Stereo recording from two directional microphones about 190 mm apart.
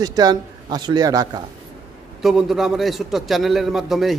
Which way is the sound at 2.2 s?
Centre (ahead or behind).